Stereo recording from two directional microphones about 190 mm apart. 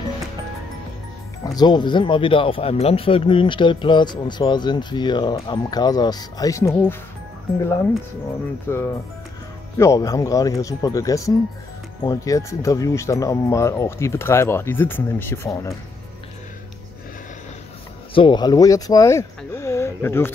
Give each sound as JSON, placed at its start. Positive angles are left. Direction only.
{"t": 1.4, "sound": "speech", "side_deg": 20}
{"t": 8.6, "sound": "speech", "side_deg": 10}
{"t": 18.1, "sound": "speech", "side_deg": 25}